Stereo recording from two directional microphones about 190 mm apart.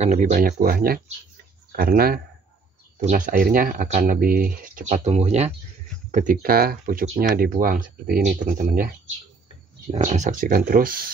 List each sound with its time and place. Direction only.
0.0 s speech: 40° right (ahead or behind)
6.1 s speech: 45° right (ahead or behind)